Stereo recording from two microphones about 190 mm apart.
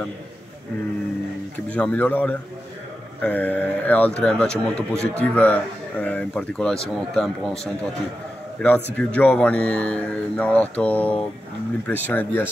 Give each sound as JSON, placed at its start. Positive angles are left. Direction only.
{"t": 1.7, "sound": "speech", "side_deg": 5}